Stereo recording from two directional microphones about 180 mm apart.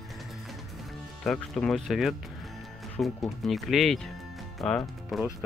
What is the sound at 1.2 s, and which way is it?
Speech, 5° left (ahead or behind).